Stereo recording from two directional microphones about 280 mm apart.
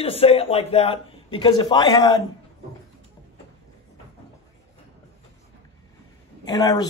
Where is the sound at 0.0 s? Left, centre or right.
Left.